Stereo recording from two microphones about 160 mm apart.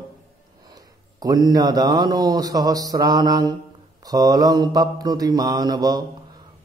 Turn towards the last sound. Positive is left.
turn(degrees=-25)  # may be behind; listen again after turning